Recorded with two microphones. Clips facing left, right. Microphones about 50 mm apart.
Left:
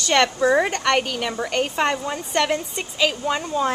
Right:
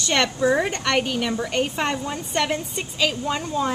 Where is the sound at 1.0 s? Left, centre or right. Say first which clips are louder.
Even; centre.